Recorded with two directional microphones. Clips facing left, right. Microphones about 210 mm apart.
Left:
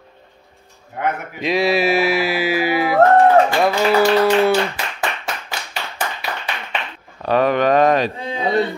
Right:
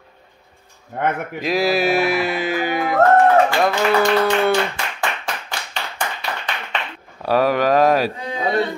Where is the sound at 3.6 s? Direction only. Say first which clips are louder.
Left 2 dB; 5° left (ahead or behind).